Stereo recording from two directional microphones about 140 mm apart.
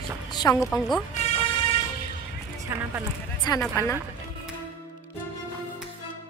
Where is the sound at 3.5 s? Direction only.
30° left (ahead or behind).